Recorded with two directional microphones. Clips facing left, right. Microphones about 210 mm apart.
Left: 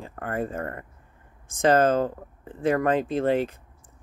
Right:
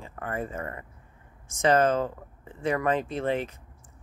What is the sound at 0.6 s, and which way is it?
Speech, 50° left (ahead or behind).